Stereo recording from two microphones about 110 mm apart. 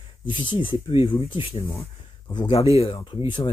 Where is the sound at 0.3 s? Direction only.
50° left (ahead or behind); by 3.0 s 65° left (ahead or behind).